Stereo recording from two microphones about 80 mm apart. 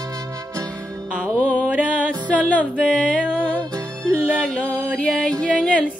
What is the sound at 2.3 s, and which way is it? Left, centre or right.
Music, centre.